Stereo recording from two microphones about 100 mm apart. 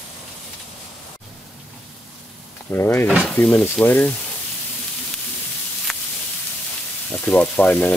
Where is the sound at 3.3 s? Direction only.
15° left (ahead or behind).